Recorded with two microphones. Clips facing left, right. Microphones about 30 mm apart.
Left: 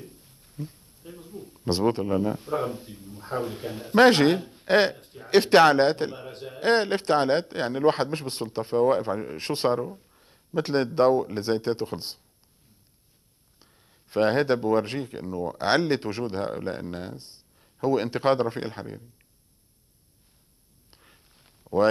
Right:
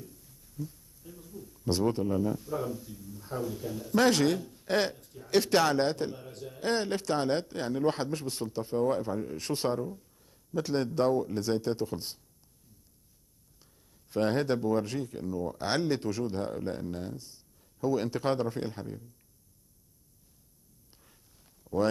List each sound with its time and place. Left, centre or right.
0.0 s speech: left
13.6 s speech: left
20.9 s a sound: left